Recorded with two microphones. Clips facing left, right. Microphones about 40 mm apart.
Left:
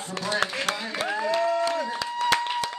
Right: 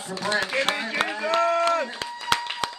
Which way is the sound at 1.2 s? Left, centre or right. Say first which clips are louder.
Right 3 dB; right.